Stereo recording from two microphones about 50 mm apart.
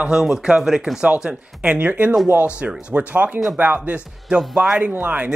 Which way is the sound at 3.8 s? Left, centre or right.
Right.